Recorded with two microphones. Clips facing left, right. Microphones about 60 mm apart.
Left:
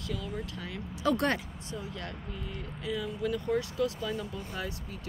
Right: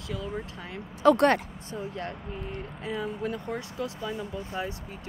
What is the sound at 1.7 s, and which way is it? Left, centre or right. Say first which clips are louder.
Speech: right 5 dB; right.